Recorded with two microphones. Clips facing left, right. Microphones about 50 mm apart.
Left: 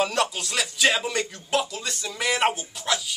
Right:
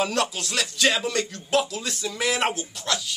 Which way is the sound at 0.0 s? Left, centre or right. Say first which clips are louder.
Left 1 dB; centre.